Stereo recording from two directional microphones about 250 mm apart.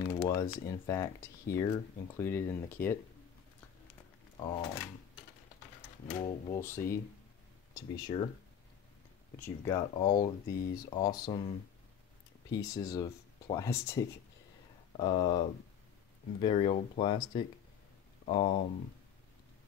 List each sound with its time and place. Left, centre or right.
0.0 s speech: centre
4.4 s speech: centre
6.0 s speech: centre
6.7 s speech: left
7.7 s speech: centre
9.4 s speech: centre
12.4 s speech: centre